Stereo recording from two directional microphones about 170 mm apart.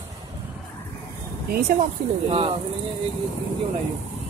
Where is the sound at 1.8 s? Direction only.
35° right (ahead or behind).